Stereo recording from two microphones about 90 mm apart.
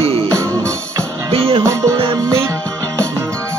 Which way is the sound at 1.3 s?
90° right.